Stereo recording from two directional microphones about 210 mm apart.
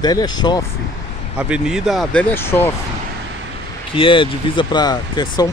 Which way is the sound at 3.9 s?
25° left (ahead or behind).